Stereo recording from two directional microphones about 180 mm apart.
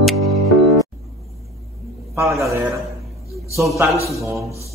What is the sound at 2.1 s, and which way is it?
A man's voice, 15° right (ahead or behind).